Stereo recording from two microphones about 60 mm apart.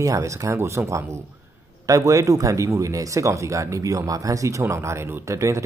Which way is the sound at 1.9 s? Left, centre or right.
Right.